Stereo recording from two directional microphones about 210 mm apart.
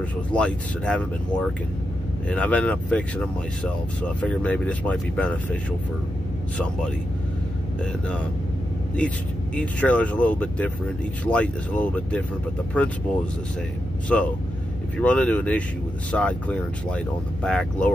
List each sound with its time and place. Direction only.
0.3 s speech: 5° left (ahead or behind)
9.6 s speech: 5° left (ahead or behind)